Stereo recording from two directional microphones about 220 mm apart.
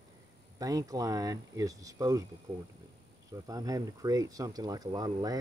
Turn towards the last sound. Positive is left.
turn(degrees=-15)  # may be behind; listen again after turning